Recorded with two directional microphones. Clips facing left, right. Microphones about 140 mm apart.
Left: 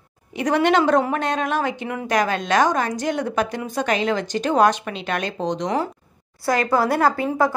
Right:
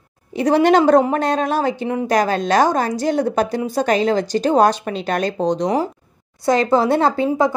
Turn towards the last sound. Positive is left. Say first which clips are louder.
# right 3 dB
turn(degrees=-20)  # may be behind; listen again after turning